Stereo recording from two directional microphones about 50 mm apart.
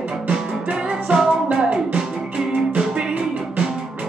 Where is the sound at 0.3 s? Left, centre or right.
Right.